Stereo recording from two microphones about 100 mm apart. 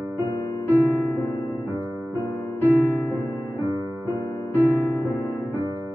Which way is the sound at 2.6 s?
20° right (ahead or behind).